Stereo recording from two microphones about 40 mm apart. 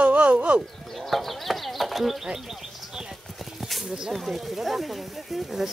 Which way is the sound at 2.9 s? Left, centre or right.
Centre.